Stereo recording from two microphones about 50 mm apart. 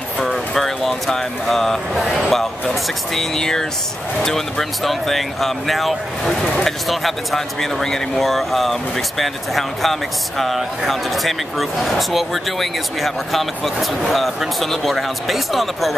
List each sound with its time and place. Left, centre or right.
0.2 s speech: centre